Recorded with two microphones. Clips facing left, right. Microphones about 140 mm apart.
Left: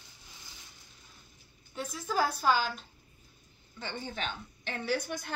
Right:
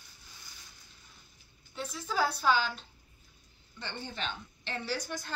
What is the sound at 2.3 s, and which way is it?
A woman's voice, 5° left (ahead or behind).